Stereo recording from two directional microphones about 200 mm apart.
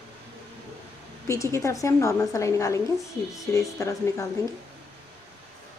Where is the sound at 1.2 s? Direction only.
15° left (ahead or behind).